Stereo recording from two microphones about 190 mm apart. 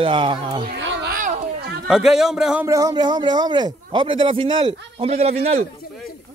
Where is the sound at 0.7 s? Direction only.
70° right (ahead or behind).